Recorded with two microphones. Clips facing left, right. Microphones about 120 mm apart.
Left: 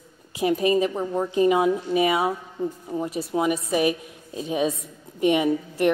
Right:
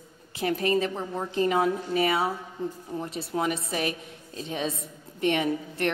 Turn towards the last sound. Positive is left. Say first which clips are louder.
# left 6 dB
turn(degrees=10)  # may be behind; listen again after turning